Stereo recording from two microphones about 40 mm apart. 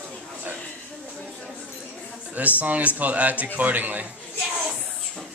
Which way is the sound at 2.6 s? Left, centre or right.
Right.